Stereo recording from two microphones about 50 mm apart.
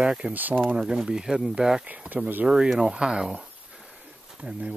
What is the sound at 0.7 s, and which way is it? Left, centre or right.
Speech, centre.